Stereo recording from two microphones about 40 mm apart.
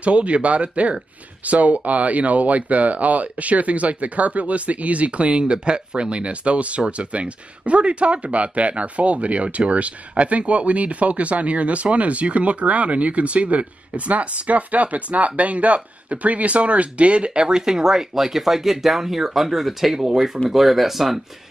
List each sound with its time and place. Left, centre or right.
0.0 s speech: right; by 21.2 s centre